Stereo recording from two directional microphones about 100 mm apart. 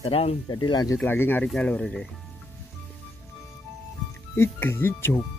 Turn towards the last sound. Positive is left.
turn(degrees=20)  # may be behind; listen again after turning